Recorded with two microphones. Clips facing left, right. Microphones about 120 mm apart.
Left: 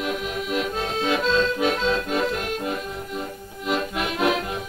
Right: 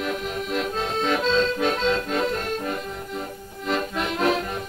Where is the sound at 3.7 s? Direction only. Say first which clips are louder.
Even; 5° left (ahead or behind).